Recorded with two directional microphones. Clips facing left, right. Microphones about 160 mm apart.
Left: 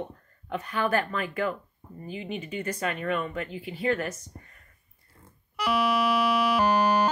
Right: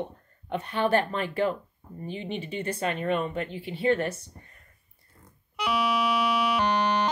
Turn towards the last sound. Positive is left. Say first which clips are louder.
# left 2 dB
turn(degrees=10)  # may be behind; listen again after turning